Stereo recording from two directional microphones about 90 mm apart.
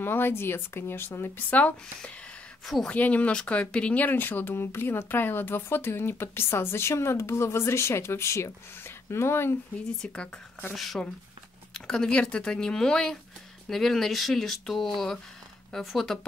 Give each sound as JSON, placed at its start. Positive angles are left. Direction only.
{"t": 0.0, "sound": "speech", "side_deg": 25}
{"t": 1.6, "sound": "speech", "side_deg": 15}
{"t": 2.6, "sound": "speech", "side_deg": 0}
{"t": 2.9, "sound": "speech", "side_deg": 15}
{"t": 10.0, "sound": "speech", "side_deg": 10}
{"t": 10.7, "sound": "speech", "side_deg": 0}